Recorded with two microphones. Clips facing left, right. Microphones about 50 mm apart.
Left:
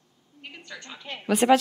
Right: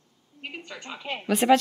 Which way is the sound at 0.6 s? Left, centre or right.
Right.